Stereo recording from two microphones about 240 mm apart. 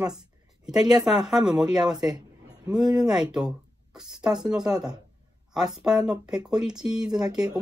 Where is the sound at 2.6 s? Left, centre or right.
Centre.